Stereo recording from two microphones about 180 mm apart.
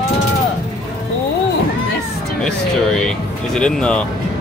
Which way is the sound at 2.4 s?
5° left (ahead or behind).